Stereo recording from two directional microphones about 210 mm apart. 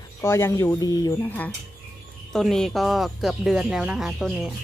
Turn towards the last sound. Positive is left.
turn(degrees=0)  # may be behind; listen again after turning